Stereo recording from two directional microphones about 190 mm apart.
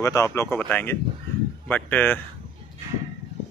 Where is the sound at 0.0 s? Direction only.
15° left (ahead or behind).